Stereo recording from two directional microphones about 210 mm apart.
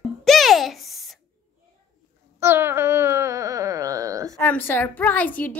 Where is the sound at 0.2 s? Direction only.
Centre (ahead or behind).